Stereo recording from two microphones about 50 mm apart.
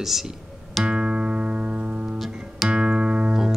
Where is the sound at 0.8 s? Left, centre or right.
Centre.